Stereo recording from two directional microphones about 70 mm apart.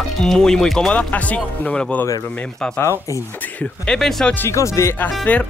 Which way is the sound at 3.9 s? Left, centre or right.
Centre.